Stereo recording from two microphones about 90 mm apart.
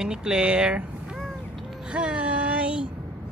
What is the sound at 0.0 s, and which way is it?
Speech, 10° right (ahead or behind).